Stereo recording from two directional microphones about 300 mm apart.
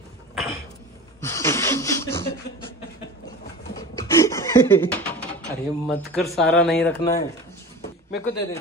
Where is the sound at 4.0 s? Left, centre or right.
Centre.